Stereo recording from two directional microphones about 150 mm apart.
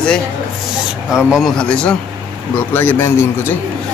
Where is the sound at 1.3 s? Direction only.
Centre (ahead or behind); by 3.6 s 15° left (ahead or behind).